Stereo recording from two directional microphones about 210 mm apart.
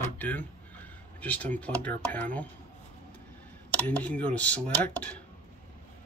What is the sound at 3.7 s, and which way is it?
Speech, 5° left (ahead or behind).